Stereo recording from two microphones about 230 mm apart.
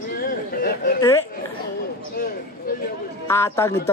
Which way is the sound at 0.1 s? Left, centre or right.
Left.